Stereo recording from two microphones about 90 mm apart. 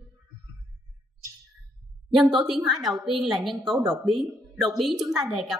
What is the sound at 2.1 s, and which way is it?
A woman's voice, centre (ahead or behind).